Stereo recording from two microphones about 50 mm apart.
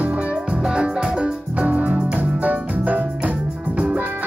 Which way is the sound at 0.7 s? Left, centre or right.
Centre.